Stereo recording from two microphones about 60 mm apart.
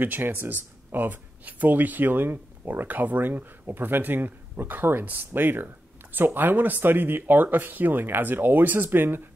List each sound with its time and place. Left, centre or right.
0.0 s speech: right